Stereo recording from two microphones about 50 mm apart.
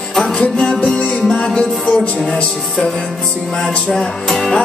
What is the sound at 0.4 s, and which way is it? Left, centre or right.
Music, left.